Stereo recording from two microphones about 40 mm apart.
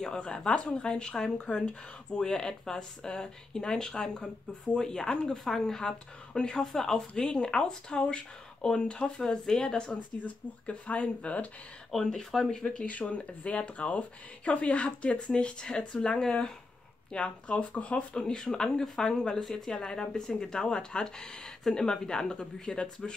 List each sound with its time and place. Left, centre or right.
0.0 s speech: centre
5.8 s speech: centre
6.7 s speech: centre
7.2 s speech: left
10.2 s speech: left
11.9 s speech: centre
12.8 s speech: left
18.1 s speech: left